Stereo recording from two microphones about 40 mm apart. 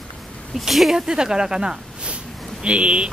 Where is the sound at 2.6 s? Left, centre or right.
Right.